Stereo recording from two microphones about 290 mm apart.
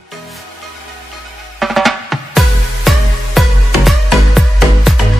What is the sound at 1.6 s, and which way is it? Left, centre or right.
Drum, centre.